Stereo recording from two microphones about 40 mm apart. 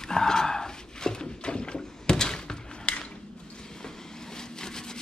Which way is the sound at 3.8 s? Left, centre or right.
Centre.